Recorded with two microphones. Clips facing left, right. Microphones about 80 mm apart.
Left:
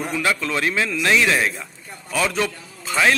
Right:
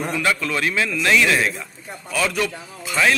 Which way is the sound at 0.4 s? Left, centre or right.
Left.